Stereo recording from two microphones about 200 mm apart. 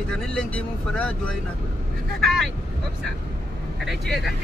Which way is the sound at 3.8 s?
Centre (ahead or behind).